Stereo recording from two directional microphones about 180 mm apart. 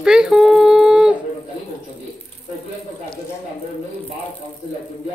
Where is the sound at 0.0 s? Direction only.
5° right (ahead or behind).